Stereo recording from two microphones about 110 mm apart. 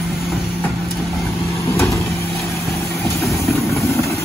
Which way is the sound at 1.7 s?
25° left (ahead or behind).